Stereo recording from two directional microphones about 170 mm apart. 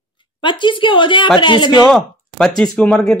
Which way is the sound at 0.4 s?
30° left (ahead or behind).